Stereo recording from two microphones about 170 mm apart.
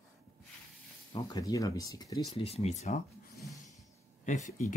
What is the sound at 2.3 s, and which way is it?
Speech, 35° left (ahead or behind).